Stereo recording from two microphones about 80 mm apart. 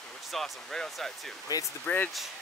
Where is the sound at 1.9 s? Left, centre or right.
Centre.